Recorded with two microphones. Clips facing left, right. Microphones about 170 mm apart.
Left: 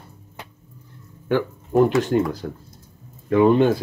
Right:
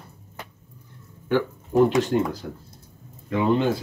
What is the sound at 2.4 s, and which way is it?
Speech, 45° left (ahead or behind).